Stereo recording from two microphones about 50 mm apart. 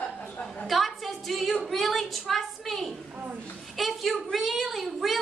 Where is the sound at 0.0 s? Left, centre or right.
Left.